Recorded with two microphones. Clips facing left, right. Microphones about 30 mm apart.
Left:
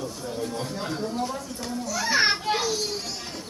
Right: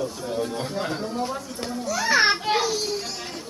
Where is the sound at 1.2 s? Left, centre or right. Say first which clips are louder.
Right 2 dB; centre.